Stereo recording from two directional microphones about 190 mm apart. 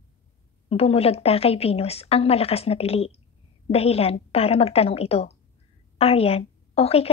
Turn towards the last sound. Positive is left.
turn(degrees=30)  # may be behind; listen again after turning